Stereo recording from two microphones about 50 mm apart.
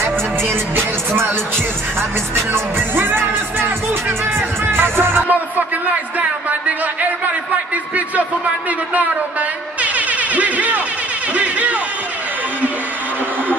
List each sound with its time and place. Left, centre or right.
0.7 s music: right
9.8 s music: right